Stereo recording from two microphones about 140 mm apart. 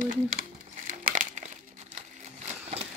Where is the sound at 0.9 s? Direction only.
65° right (ahead or behind).